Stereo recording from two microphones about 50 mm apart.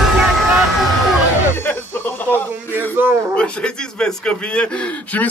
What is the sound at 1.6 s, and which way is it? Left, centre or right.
Music, left.